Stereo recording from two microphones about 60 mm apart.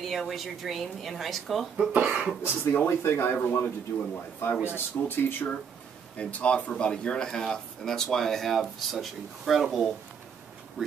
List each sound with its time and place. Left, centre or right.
0.0 s speech: centre
1.9 s speech: right
2.7 s speech: left
3.4 s a man's voice: left
4.4 s speech: left
6.1 s speech: left; by 10.9 s centre